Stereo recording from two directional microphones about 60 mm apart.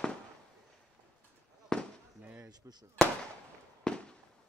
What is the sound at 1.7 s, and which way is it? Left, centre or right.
Fireworks, centre.